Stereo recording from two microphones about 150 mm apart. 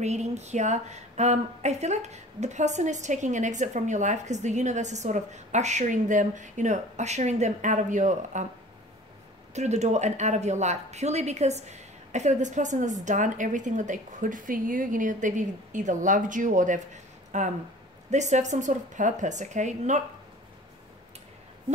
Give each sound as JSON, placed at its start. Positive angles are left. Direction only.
{"t": 0.0, "sound": "speech", "side_deg": -50}
{"t": 9.5, "sound": "a woman's voice", "side_deg": -50}